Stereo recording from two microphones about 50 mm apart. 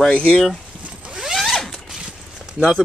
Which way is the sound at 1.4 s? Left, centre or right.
Centre.